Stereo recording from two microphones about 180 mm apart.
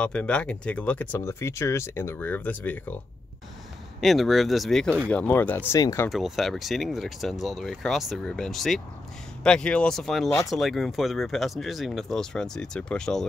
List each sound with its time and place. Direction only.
0.0 s speech: 5° left (ahead or behind)
4.0 s speech: centre (ahead or behind); by 6.0 s 20° left (ahead or behind)
6.0 s speech: centre (ahead or behind)